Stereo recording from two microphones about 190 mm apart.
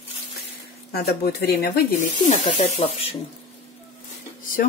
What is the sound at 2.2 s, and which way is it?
Speech, 35° left (ahead or behind).